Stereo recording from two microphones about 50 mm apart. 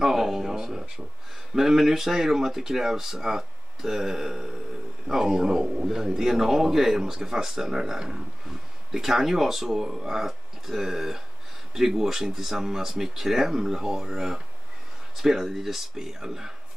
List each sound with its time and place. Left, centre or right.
0.0 s a man's voice: centre